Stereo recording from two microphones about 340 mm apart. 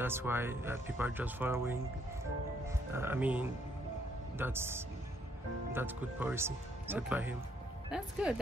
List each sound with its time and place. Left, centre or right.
0.0 s speech: centre